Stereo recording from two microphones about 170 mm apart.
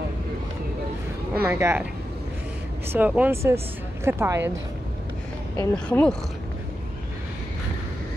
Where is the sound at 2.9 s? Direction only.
10° right (ahead or behind).